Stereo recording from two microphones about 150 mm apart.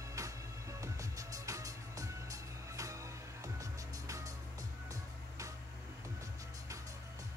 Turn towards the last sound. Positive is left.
turn(degrees=-20)  # may be behind; listen again after turning